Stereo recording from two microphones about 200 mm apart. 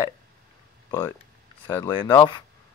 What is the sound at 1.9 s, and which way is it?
Speech, 25° left (ahead or behind).